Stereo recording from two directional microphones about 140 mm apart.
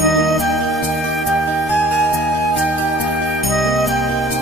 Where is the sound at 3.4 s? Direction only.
Centre (ahead or behind).